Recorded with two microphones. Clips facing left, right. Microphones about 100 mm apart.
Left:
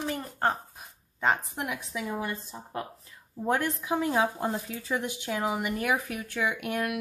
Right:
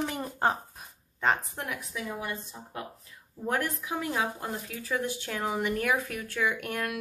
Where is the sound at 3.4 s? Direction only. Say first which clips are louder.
Left 3 dB; 25° left (ahead or behind).